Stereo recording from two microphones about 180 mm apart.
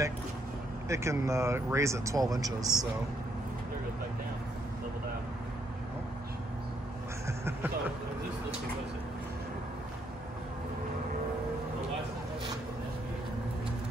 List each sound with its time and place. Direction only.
0.8 s speech: 15° right (ahead or behind)
7.2 s music: 15° right (ahead or behind)